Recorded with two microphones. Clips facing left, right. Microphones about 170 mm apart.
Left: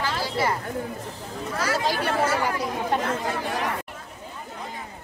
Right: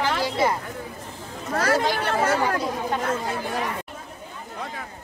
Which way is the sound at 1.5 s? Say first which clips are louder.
Right 5 dB; 60° right (ahead or behind).